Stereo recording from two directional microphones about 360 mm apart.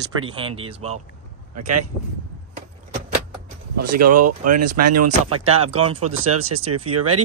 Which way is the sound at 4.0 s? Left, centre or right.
Right.